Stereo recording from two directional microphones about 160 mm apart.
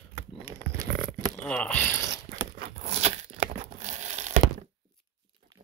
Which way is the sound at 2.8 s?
45° right (ahead or behind).